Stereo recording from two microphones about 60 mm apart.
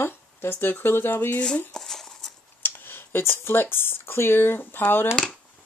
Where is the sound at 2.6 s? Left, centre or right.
Left.